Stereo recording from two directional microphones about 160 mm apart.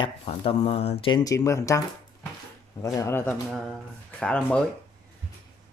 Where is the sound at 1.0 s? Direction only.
25° left (ahead or behind).